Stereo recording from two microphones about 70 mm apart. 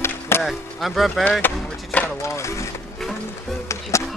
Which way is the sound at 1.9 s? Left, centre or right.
Left.